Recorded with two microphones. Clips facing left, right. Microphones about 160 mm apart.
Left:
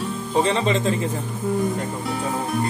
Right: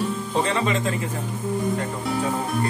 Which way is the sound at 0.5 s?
25° left (ahead or behind).